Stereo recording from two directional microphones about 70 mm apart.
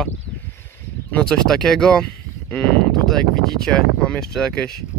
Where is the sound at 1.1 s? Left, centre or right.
Centre.